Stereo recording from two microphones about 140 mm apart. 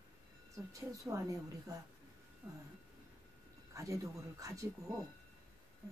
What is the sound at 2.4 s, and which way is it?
Speech, 25° right (ahead or behind).